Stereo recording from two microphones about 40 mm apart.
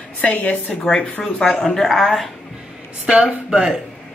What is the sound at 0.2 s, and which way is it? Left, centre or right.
Speech, left.